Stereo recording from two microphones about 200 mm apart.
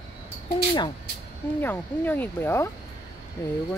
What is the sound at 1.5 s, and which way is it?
Speech, 10° left (ahead or behind).